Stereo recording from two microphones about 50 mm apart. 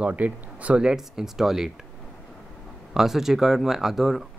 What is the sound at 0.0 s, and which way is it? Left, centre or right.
Speech, right.